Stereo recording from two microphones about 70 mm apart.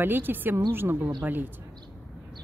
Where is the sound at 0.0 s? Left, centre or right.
Right.